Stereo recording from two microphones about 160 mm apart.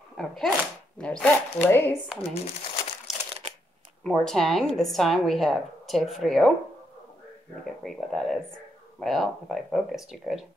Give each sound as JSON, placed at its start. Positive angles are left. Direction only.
{"t": 0.2, "sound": "a woman's voice", "side_deg": 0}
{"t": 2.3, "sound": "speech", "side_deg": 40}
{"t": 3.1, "sound": "crushing", "side_deg": 0}
{"t": 4.0, "sound": "a woman's voice", "side_deg": 5}
{"t": 7.8, "sound": "a woman's voice", "side_deg": 5}